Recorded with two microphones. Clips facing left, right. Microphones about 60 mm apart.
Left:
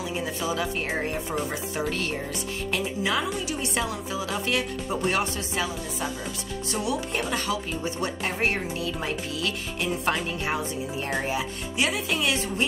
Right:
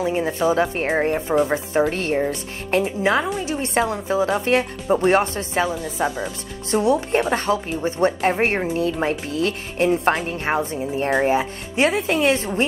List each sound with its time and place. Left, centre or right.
0.0 s speech: right